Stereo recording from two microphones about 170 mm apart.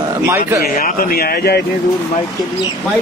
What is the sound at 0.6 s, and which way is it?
Speech, 60° left (ahead or behind).